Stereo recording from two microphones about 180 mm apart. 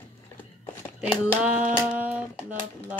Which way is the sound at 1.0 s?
5° right (ahead or behind).